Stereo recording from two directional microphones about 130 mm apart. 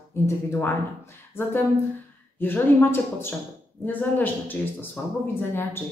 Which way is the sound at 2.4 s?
15° left (ahead or behind).